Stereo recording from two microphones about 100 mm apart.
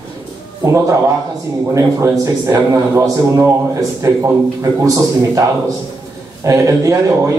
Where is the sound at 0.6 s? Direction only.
30° right (ahead or behind).